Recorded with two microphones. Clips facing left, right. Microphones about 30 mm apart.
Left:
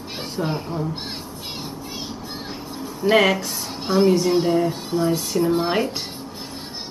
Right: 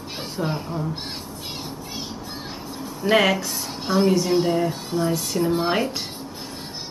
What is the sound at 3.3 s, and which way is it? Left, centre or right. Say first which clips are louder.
Speech: even; centre.